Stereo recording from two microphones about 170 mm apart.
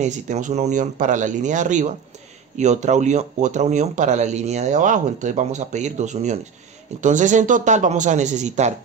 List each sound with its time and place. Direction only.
0.0 s speech: 45° right (ahead or behind)